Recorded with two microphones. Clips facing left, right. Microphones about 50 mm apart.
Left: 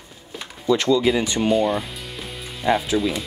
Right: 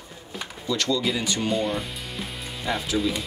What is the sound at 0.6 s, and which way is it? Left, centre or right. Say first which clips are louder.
Speech: left 7 dB; left.